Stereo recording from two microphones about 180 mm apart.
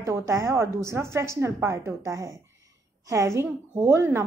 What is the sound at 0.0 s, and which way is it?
A woman's voice, 15° right (ahead or behind).